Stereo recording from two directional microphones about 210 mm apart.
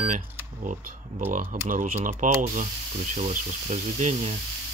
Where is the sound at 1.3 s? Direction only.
40° right (ahead or behind).